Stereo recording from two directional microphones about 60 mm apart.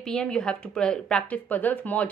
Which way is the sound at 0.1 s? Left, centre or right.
Centre.